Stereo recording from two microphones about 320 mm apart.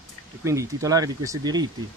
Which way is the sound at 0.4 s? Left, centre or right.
Centre.